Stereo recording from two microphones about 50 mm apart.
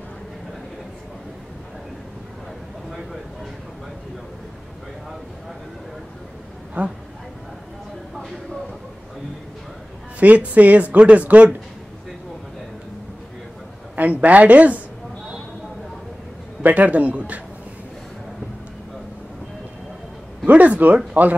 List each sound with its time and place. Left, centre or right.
6.8 s a man's voice: right
10.2 s speech: right
13.9 s speech: right
16.6 s a man's voice: right
20.4 s a man's voice: right